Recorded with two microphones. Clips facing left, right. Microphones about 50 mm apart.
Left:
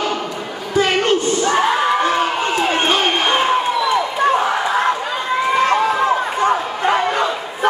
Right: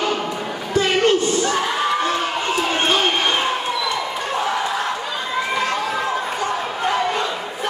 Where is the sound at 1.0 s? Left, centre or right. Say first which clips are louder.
Left 1 dB; left.